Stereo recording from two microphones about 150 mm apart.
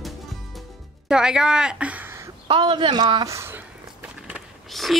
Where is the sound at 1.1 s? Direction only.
5° right (ahead or behind).